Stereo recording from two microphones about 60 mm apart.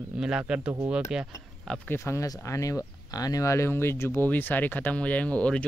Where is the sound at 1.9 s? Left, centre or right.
Left.